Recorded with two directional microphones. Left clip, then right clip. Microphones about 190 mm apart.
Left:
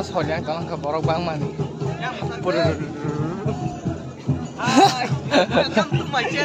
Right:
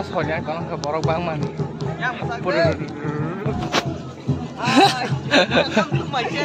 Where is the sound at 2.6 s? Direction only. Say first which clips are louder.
Right 4 dB; 5° left (ahead or behind).